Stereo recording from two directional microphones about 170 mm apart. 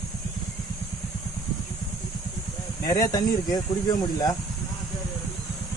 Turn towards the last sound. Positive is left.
turn(degrees=20)  # may be behind; listen again after turning